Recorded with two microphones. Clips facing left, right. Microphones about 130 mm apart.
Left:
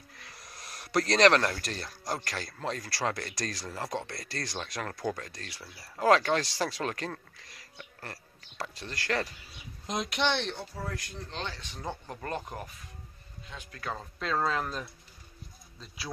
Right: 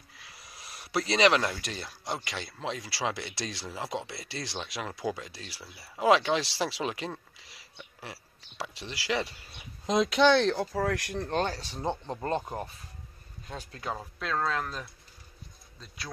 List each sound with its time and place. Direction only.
0.1 s speech: centre (ahead or behind)
10.5 s speech: 90° right; by 11.6 s 50° right (ahead or behind)
11.6 s speech: 25° right (ahead or behind)
13.9 s speech: centre (ahead or behind)